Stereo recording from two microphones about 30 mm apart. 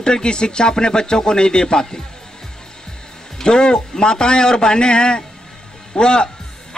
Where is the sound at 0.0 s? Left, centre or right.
Left.